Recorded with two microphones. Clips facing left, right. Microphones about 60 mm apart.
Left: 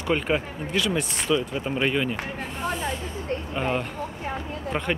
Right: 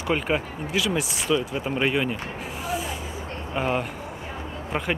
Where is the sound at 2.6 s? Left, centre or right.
Centre.